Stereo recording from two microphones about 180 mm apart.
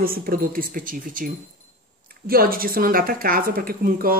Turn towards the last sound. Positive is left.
turn(degrees=-55)  # may be behind; listen again after turning